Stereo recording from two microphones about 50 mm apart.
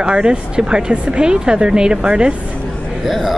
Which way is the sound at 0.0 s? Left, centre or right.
Centre.